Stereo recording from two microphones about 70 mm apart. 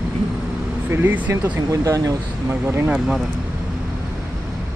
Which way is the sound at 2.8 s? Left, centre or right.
Centre.